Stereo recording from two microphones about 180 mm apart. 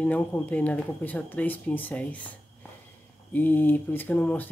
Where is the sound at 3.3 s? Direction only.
10° left (ahead or behind).